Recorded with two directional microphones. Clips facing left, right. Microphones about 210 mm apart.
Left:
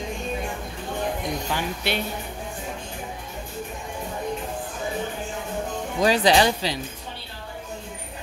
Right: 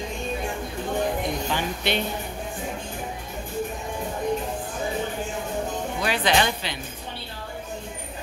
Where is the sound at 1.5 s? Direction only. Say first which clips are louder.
Right 1 dB; 5° left (ahead or behind).